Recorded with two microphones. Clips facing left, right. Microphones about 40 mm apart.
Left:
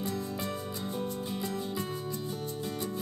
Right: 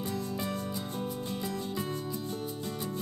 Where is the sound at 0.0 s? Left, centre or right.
Centre.